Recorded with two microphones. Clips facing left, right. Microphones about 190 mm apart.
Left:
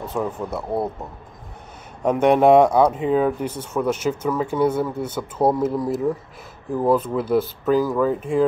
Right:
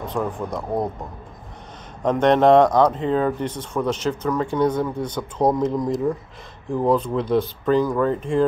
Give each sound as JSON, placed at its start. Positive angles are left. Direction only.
{"t": 0.0, "sound": "speech", "side_deg": 5}
{"t": 2.0, "sound": "speech", "side_deg": 10}